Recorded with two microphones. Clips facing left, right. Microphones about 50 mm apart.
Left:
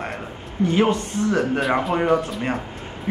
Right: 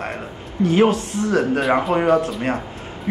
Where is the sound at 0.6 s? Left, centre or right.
Left.